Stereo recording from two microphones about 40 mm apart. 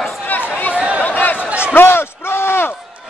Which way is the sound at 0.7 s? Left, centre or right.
Right.